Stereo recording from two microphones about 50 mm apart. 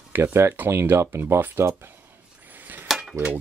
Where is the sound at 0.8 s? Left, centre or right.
Right.